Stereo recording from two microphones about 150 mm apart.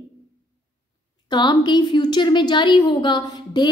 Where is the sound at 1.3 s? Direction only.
30° left (ahead or behind).